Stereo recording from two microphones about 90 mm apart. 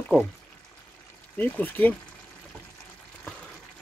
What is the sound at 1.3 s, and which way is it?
Speech, 20° left (ahead or behind).